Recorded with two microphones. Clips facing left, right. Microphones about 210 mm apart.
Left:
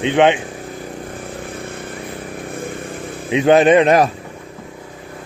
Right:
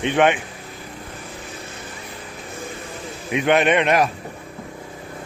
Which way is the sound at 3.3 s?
30° left (ahead or behind).